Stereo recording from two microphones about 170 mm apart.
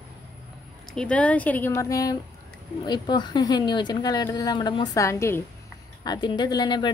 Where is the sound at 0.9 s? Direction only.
5° left (ahead or behind).